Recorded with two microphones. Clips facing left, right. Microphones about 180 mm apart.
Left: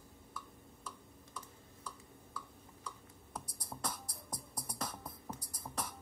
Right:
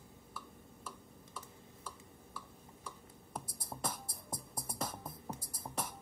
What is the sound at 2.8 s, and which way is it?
Music, 25° right (ahead or behind).